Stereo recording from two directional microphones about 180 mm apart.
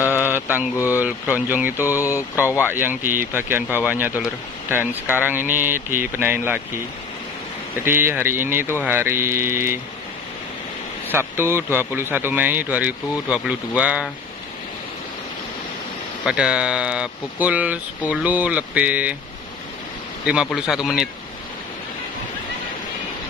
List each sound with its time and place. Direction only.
0.0 s mantra: 15° left (ahead or behind)
0.3 s mantra: 10° right (ahead or behind)
0.8 s speech: 10° right (ahead or behind)
2.0 s speech: 15° left (ahead or behind)
2.6 s speech: 10° right (ahead or behind)
7.8 s speech: 10° right (ahead or behind)
11.1 s speech: 15° right (ahead or behind)
16.3 s speech: 5° right (ahead or behind)
20.2 s speech: 5° right (ahead or behind)